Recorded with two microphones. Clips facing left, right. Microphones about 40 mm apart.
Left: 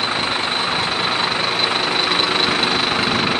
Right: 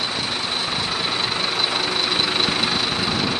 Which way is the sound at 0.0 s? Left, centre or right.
Left.